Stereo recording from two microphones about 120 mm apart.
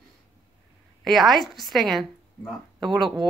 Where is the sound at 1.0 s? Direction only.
Centre (ahead or behind).